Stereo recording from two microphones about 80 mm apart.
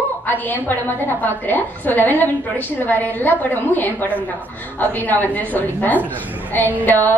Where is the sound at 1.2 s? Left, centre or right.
Left.